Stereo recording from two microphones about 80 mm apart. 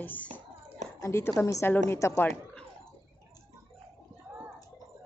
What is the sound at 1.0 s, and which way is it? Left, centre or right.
A woman's voice, left.